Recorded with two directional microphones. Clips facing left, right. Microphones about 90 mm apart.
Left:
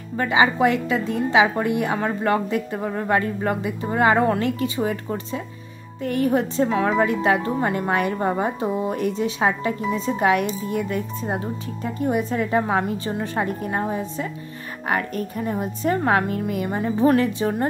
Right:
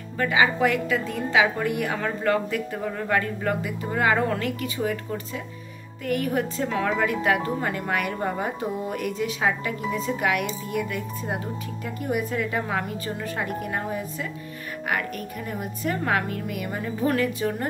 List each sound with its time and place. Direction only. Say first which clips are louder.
0.2 s a woman's voice: left 3 dB; 25° left (ahead or behind)